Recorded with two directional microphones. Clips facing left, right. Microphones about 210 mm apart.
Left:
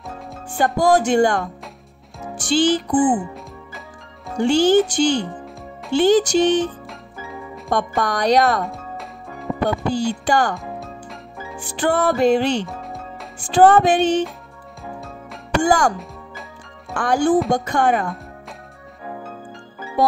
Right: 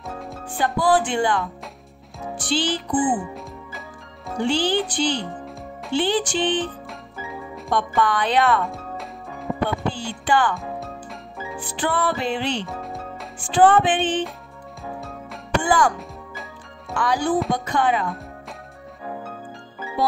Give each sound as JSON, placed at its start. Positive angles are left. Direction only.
{"t": 0.7, "sound": "music", "side_deg": 45}
{"t": 4.4, "sound": "music", "side_deg": 45}
{"t": 7.7, "sound": "speech", "side_deg": 40}
{"t": 8.6, "sound": "music", "side_deg": 0}
{"t": 9.7, "sound": "speech", "side_deg": 40}
{"t": 11.5, "sound": "music", "side_deg": 45}
{"t": 12.6, "sound": "music", "side_deg": 0}
{"t": 13.4, "sound": "speech", "side_deg": 40}
{"t": 15.0, "sound": "music", "side_deg": 0}
{"t": 15.6, "sound": "music", "side_deg": 45}